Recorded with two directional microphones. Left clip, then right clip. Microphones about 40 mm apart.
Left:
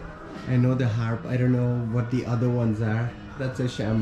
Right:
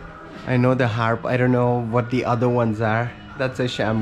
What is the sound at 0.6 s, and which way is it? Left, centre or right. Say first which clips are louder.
Speech: right 13 dB; left.